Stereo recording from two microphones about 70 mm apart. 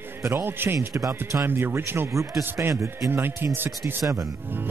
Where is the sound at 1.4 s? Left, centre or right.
Right.